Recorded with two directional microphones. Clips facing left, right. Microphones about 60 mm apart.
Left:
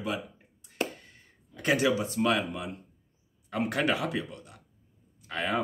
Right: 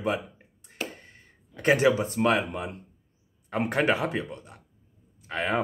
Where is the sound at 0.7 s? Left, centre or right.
Right.